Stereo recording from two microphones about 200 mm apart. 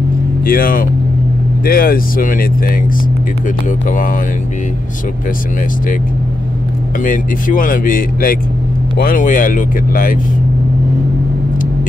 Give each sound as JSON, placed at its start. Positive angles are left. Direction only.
{"t": 0.5, "sound": "speech", "side_deg": 45}
{"t": 7.0, "sound": "speech", "side_deg": 40}